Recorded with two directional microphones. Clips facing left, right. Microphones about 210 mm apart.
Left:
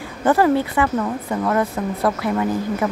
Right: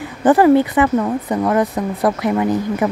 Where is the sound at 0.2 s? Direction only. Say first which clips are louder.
Right 5 dB; 15° right (ahead or behind).